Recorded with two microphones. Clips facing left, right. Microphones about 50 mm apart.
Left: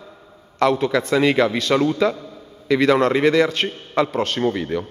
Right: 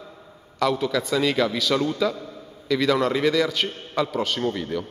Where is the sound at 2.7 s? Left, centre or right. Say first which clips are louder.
Left 5 dB; left.